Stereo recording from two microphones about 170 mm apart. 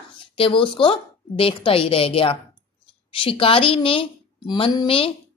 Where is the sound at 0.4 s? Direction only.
30° left (ahead or behind).